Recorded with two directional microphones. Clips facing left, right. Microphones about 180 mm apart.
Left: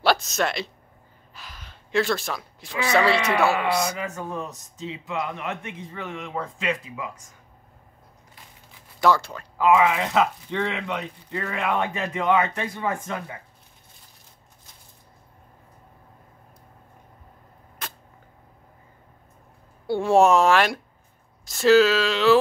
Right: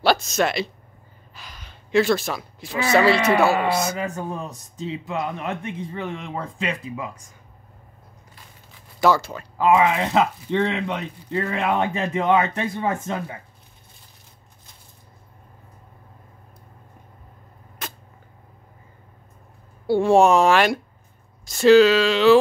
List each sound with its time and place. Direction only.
0.0 s speech: centre (ahead or behind)
1.3 s gasp: centre (ahead or behind)
2.9 s speech: centre (ahead or behind)
3.4 s a man's voice: 30° right (ahead or behind)
9.0 s speech: 5° right (ahead or behind)
9.6 s speech: 35° right (ahead or behind)
19.9 s speech: centre (ahead or behind)